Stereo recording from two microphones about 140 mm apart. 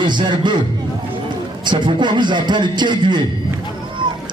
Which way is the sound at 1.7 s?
35° right (ahead or behind).